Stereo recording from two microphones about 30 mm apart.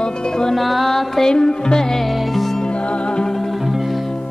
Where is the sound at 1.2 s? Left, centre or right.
Left.